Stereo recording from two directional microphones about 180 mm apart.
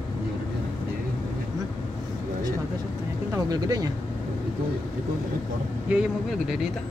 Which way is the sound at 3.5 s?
20° right (ahead or behind).